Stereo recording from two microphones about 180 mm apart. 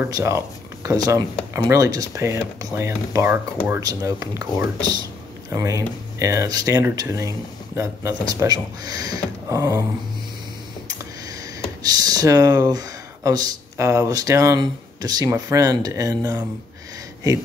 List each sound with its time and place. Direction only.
0.0 s speech: 15° right (ahead or behind)
11.8 s speech: 20° right (ahead or behind)